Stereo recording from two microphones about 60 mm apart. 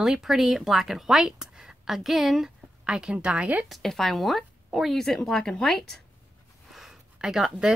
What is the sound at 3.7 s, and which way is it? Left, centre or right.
Speech, centre.